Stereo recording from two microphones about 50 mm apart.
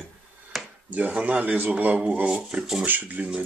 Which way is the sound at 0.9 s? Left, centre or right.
Right.